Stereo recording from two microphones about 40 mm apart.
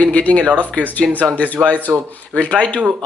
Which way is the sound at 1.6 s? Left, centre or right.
Right.